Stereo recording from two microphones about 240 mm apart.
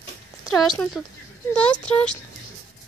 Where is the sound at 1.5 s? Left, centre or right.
Centre.